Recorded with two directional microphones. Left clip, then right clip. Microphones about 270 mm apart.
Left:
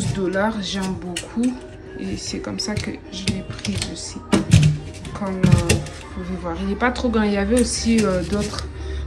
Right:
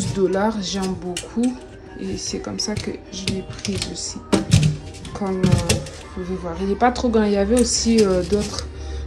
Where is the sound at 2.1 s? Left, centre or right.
Centre.